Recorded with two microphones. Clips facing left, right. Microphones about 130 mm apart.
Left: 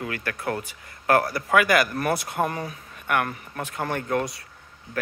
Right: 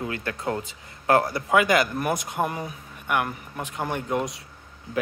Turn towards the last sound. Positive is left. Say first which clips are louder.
# left 1 dB
turn(degrees=-10)  # may be behind; listen again after turning